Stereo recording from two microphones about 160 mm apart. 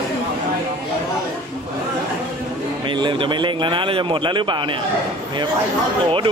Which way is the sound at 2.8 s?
30° right (ahead or behind).